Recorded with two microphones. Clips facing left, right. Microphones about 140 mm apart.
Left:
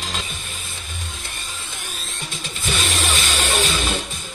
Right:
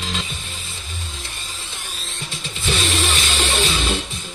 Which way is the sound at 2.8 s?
45° left (ahead or behind).